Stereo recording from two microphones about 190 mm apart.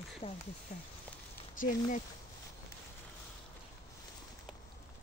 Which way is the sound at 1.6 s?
40° left (ahead or behind).